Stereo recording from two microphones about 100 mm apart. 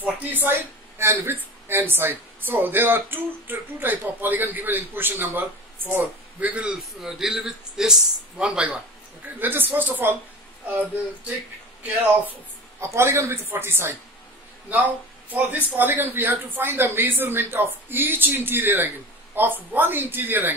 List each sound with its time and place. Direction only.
0.0 s speech: 15° right (ahead or behind)
11.8 s a man's voice: 15° right (ahead or behind)
12.8 s speech: 25° right (ahead or behind)